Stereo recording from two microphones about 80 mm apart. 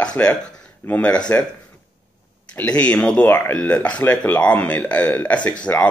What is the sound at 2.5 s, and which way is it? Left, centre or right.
Speech, centre.